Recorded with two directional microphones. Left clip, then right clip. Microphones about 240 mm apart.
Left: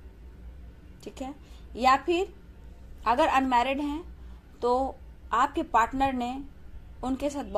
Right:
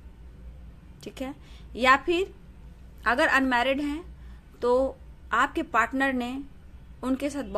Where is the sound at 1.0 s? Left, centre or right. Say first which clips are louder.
Right 2 dB; right.